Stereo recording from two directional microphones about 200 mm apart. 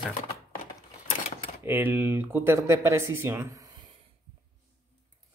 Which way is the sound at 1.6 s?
10° right (ahead or behind).